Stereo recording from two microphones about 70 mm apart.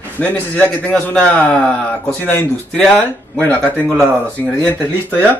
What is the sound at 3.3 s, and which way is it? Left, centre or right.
Speech, centre.